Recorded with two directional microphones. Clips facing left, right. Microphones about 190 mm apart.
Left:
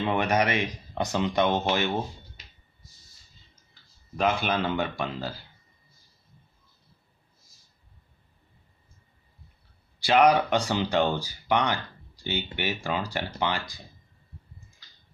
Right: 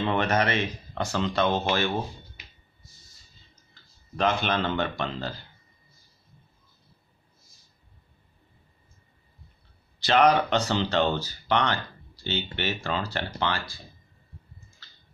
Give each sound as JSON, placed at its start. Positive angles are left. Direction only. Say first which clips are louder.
{"t": 0.0, "sound": "speech", "louder": "even", "side_deg": 10}
{"t": 3.7, "sound": "speech", "louder": "even", "side_deg": 10}
{"t": 9.9, "sound": "speech", "louder": "even", "side_deg": 10}
{"t": 14.8, "sound": "a sound", "louder": "right 3 dB", "side_deg": 15}